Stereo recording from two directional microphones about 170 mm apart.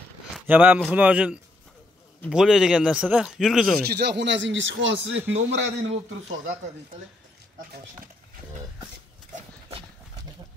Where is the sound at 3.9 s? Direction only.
80° right.